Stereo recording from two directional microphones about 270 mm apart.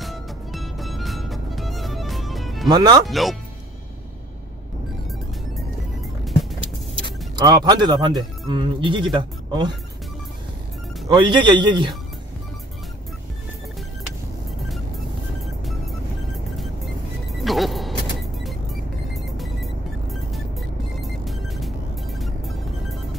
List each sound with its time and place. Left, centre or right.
0.0 s music: centre
2.7 s speech: centre
3.1 s speech: centre
7.3 s speech: centre
11.1 s speech: centre
17.3 s music: centre
19.3 s music: centre